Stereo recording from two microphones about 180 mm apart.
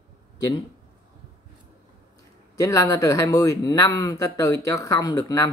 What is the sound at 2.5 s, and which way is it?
Speech, 20° left (ahead or behind).